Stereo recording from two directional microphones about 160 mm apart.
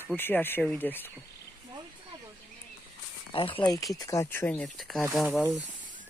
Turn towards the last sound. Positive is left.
turn(degrees=0)  # may be behind; listen again after turning